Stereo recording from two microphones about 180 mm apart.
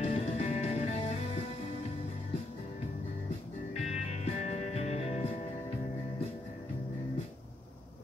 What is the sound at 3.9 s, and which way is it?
Music, 40° left (ahead or behind).